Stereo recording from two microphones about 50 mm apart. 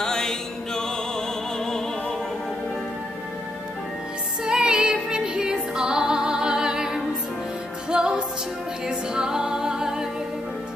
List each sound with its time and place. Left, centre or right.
0.0 s music: centre
4.5 s music: centre
8.8 s singing: centre